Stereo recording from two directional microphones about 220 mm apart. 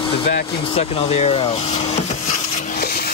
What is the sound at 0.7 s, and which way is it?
Wood, 25° left (ahead or behind).